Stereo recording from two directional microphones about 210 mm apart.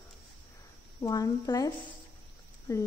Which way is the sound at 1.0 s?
15° left (ahead or behind).